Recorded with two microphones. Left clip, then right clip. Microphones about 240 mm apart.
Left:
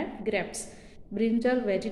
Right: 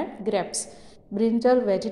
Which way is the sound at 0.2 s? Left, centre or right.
Centre.